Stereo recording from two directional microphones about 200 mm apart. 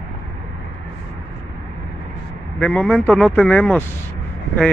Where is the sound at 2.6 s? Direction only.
5° left (ahead or behind).